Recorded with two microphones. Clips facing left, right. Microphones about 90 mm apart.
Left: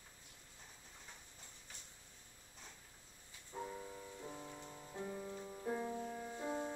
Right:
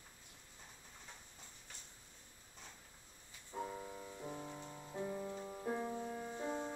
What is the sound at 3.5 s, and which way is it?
Music, 15° right (ahead or behind).